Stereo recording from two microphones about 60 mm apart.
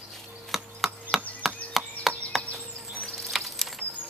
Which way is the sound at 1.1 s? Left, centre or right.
Centre.